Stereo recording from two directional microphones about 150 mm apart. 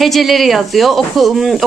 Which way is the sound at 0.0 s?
Centre (ahead or behind).